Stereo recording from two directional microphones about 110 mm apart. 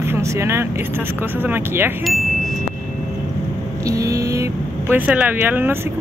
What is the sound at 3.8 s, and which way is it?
Vehicle, 30° right (ahead or behind).